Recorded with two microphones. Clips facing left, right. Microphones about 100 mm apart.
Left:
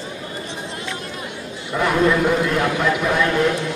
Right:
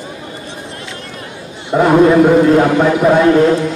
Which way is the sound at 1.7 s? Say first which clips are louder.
Right 9 dB; 35° right (ahead or behind).